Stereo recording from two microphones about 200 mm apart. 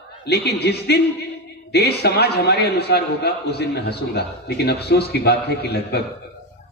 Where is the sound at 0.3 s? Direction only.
55° left (ahead or behind).